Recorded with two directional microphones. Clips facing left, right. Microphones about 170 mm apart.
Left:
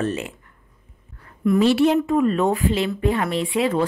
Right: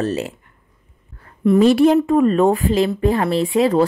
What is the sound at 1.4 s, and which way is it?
A woman's voice, 45° right (ahead or behind).